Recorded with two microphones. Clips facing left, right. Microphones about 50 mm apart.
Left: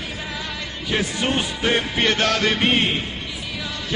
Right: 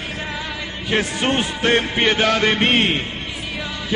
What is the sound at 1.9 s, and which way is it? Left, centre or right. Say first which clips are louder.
Music: right 3 dB; centre.